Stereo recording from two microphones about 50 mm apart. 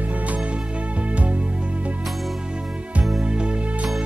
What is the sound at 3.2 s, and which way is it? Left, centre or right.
Music, centre.